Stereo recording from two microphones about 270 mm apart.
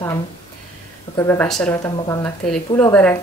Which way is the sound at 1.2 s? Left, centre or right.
Centre.